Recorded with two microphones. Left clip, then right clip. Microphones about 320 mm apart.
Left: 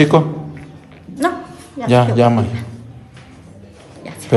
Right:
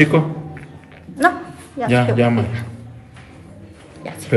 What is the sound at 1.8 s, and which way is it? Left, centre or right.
Speech, centre.